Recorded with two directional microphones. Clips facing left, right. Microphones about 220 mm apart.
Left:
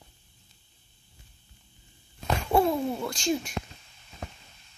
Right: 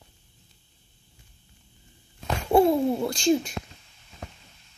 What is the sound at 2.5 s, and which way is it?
Speech, 20° right (ahead or behind).